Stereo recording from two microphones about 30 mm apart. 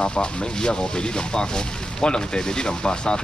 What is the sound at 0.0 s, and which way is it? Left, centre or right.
Speech, left.